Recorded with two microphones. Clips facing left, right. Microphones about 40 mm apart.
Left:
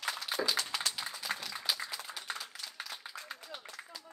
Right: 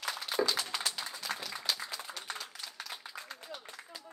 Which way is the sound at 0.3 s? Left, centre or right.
Centre.